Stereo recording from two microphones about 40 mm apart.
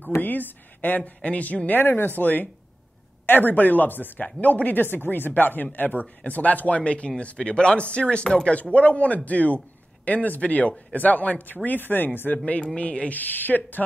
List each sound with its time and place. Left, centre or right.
0.2 s speech: left
1.7 s speech: left
4.8 s speech: left
6.8 s speech: left
12.5 s speech: left
13.2 s speech: left